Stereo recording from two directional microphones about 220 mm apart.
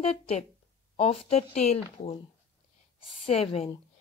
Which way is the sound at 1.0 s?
25° left (ahead or behind).